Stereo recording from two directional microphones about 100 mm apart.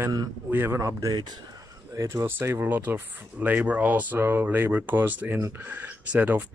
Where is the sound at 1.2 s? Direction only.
40° right (ahead or behind).